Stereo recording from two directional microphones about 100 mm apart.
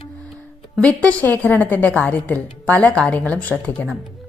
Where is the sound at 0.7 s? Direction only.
15° left (ahead or behind).